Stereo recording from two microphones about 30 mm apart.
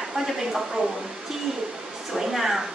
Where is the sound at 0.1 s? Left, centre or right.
Centre.